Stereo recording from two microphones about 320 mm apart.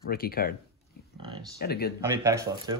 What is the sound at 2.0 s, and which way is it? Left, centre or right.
Speech, centre.